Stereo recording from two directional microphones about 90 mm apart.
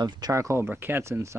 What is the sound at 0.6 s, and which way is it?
Speech, 20° right (ahead or behind).